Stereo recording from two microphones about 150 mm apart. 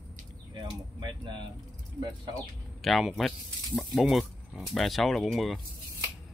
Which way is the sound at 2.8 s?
Centre (ahead or behind).